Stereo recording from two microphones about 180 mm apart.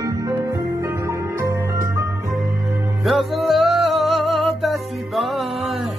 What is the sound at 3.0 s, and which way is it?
Music, centre (ahead or behind).